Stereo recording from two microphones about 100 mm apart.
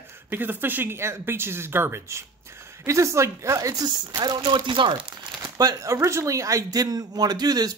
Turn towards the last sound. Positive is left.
turn(degrees=-40)  # may be behind; listen again after turning